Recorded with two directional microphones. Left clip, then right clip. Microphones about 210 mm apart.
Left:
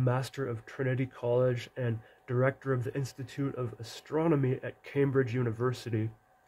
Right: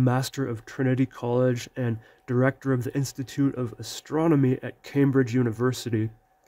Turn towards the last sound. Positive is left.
turn(degrees=-55)  # may be behind; listen again after turning